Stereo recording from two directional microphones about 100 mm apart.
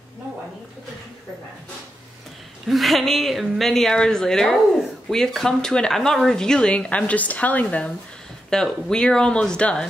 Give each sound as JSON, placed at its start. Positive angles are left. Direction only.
{"t": 2.7, "sound": "speech", "side_deg": 0}